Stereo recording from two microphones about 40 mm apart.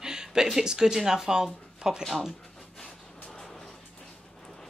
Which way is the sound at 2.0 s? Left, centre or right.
Centre.